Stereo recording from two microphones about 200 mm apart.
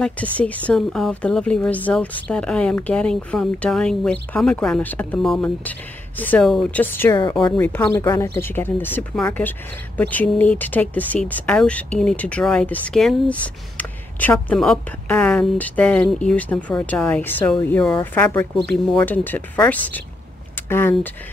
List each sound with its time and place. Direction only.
0.0 s a woman's voice: 5° left (ahead or behind)
7.1 s a woman's voice: 20° left (ahead or behind)